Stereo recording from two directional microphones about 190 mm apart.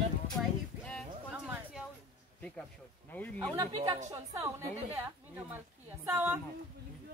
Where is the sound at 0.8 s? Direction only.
Centre (ahead or behind).